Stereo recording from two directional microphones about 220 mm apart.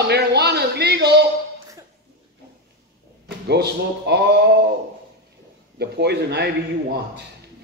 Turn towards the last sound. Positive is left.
turn(degrees=-50)  # may be behind; listen again after turning